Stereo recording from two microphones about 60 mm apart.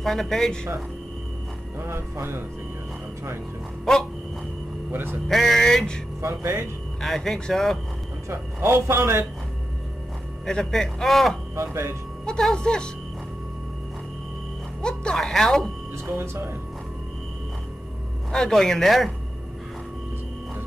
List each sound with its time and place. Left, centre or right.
0.0 s a man's voice: centre
1.8 s speech: right
4.9 s speech: right
5.3 s a man's voice: centre
6.2 s speech: right
7.0 s a man's voice: centre
8.5 s speech: right
10.4 s a man's voice: centre
11.5 s speech: right
12.3 s speech: centre
14.8 s speech: centre
16.2 s speech: right
18.3 s speech: centre